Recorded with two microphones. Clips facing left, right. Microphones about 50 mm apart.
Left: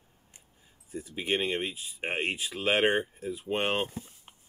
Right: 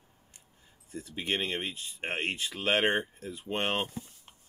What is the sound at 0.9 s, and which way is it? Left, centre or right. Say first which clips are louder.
Speech: left 2 dB; centre.